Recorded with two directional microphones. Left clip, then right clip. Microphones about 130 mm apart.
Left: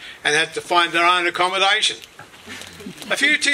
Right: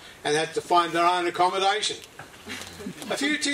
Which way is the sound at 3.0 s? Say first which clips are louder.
Left 9 dB; 30° left (ahead or behind).